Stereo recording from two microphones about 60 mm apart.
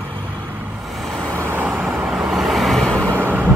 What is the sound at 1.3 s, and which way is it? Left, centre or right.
Vehicle, right.